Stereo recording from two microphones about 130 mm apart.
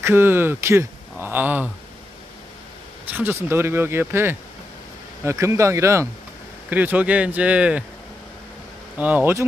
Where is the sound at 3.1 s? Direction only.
15° right (ahead or behind).